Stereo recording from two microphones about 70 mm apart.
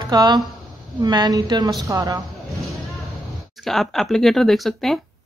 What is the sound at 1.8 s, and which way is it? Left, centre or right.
Speech, right.